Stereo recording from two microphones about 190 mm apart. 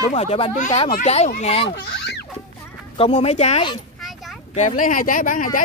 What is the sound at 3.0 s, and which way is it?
Speech, 30° left (ahead or behind).